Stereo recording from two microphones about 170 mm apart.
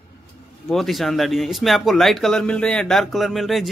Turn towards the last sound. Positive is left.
turn(degrees=0)  # may be behind; listen again after turning